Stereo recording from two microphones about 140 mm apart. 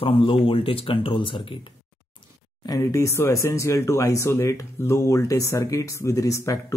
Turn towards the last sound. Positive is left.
turn(degrees=20)  # may be behind; listen again after turning